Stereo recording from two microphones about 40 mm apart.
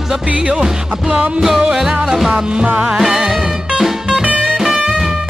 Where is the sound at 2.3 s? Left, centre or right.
Right.